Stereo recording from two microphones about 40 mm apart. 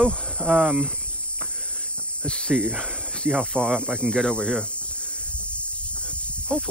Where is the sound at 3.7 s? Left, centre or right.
Right.